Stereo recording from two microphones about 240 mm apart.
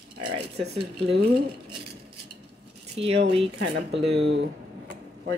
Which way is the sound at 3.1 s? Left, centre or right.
Right.